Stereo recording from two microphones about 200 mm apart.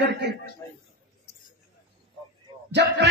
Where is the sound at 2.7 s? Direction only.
60° right (ahead or behind).